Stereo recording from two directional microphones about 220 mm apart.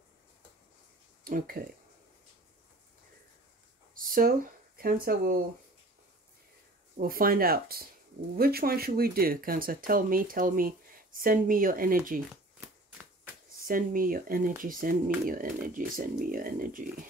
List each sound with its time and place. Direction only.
1.2 s speech: 40° right (ahead or behind)
3.9 s speech: 40° right (ahead or behind)
7.0 s speech: 40° right (ahead or behind)
12.3 s shuffling cards: 5° right (ahead or behind)
13.7 s speech: 40° right (ahead or behind)